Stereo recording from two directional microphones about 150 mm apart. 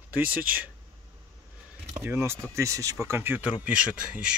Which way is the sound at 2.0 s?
15° right (ahead or behind).